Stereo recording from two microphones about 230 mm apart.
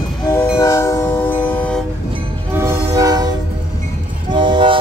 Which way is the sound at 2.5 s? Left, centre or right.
Centre.